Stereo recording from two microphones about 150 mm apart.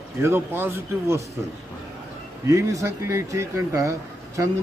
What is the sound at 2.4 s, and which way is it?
A man's voice, 20° right (ahead or behind).